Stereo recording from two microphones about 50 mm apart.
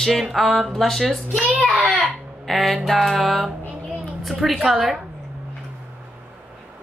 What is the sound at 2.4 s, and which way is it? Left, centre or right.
Speech, centre.